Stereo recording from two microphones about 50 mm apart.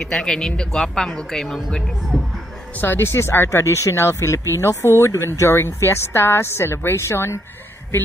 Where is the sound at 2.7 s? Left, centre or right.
Left.